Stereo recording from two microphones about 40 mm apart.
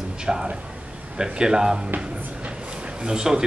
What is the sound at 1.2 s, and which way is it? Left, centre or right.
Speech, centre.